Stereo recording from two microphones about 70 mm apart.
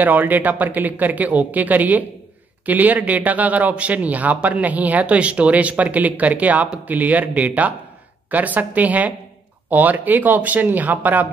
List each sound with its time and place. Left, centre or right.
0.0 s speech: right